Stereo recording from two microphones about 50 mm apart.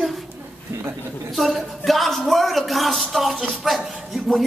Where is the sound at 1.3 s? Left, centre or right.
Centre.